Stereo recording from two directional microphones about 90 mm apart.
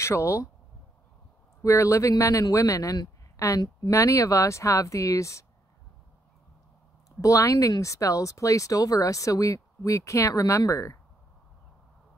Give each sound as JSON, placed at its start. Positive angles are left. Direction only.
{"t": 0.0, "sound": "speech", "side_deg": 30}
{"t": 1.6, "sound": "speech", "side_deg": 35}
{"t": 7.1, "sound": "speech", "side_deg": 35}